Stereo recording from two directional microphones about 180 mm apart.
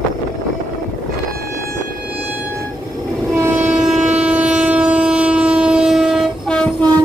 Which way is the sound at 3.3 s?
10° right (ahead or behind).